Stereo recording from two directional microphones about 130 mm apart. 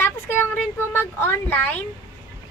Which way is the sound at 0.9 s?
15° left (ahead or behind).